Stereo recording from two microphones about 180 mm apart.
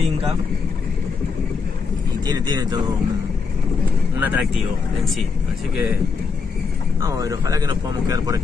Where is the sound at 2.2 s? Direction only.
20° right (ahead or behind).